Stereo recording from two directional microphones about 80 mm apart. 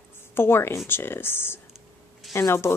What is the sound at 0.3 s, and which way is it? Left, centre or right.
Speech, left.